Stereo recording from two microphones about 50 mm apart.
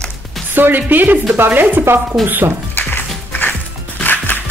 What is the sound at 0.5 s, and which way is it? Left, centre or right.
Speech, right.